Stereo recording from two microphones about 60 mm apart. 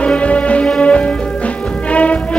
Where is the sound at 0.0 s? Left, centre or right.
Left.